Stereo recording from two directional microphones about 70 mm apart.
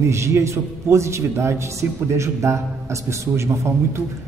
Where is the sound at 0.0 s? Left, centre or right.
Right.